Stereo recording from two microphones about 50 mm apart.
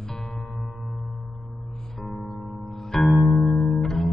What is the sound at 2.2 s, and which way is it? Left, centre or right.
Music, centre.